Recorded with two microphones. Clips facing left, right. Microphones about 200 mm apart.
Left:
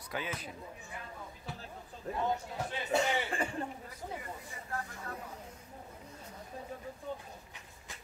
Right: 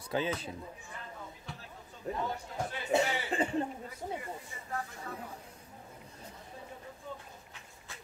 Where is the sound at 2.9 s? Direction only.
20° right (ahead or behind).